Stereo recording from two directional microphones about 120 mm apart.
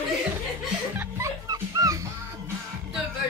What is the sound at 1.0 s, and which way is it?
Music, 25° right (ahead or behind).